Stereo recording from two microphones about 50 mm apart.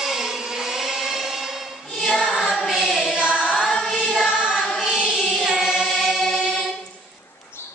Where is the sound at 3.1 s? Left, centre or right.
Right.